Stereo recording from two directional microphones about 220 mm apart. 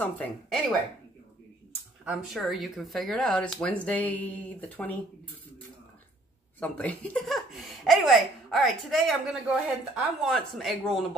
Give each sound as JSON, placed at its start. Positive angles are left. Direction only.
{"t": 0.0, "sound": "a woman's voice", "side_deg": 5}
{"t": 2.0, "sound": "a woman's voice", "side_deg": 0}
{"t": 6.6, "sound": "speech", "side_deg": 5}